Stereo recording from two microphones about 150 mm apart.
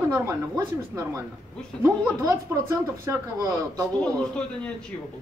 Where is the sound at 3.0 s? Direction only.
20° right (ahead or behind).